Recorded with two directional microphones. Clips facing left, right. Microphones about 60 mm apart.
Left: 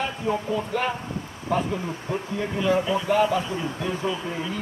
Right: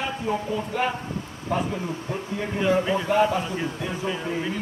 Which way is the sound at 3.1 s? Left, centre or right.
Centre.